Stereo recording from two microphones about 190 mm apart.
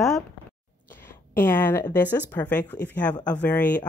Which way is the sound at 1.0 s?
10° left (ahead or behind).